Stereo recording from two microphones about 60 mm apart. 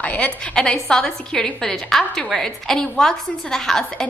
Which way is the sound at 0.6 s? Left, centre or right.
Centre.